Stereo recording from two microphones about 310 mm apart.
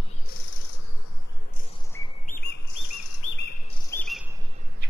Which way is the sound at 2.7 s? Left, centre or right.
Left.